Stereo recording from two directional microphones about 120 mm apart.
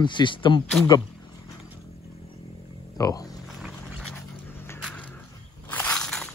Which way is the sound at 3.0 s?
30° left (ahead or behind).